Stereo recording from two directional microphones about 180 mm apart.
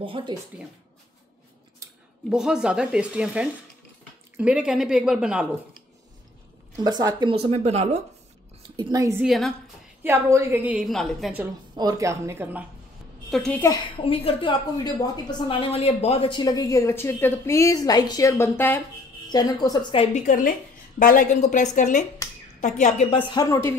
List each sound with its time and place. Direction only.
0.0 s a woman's voice: 25° right (ahead or behind)
2.2 s speech: 5° right (ahead or behind)
6.7 s a woman's voice: 20° right (ahead or behind)
8.7 s a woman's voice: 20° right (ahead or behind)
9.2 s speech: centre (ahead or behind)
10.0 s a woman's voice: 10° right (ahead or behind)
11.7 s a woman's voice: 20° right (ahead or behind)
13.3 s speech: 5° left (ahead or behind)
13.9 s a woman's voice: 30° left (ahead or behind)
21.0 s a woman's voice: 50° left (ahead or behind)
23.1 s a woman's voice: 25° left (ahead or behind)